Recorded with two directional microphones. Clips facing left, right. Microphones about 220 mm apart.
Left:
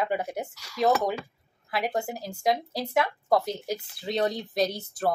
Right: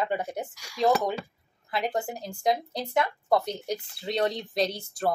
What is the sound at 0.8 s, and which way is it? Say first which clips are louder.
Speech: even; centre (ahead or behind).